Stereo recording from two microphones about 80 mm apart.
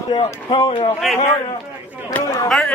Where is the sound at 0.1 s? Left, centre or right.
Left.